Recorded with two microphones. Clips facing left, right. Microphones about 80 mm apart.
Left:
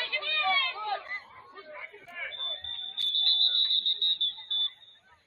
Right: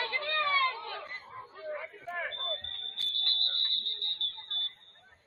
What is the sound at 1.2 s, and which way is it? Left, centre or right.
Chatter, centre.